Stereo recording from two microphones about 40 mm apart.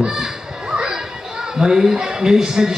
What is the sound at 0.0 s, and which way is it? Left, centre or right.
Children playing, centre.